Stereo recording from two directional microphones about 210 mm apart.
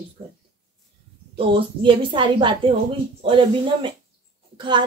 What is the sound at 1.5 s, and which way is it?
A woman's voice, 25° right (ahead or behind).